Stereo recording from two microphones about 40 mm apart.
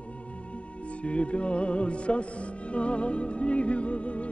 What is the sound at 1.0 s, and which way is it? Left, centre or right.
Music, left.